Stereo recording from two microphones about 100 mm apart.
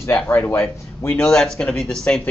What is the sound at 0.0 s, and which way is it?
Speech, 25° left (ahead or behind).